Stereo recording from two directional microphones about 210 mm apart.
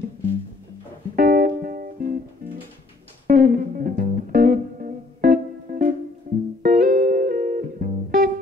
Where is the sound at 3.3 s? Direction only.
45° right (ahead or behind).